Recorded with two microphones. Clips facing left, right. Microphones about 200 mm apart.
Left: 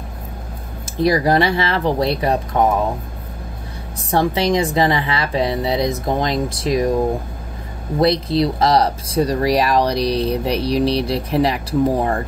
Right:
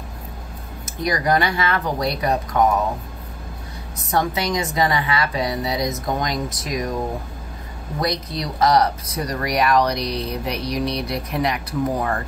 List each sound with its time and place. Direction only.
0.8 s speech: 30° left (ahead or behind)
4.1 s speech: 30° left (ahead or behind)
8.0 s speech: 30° left (ahead or behind)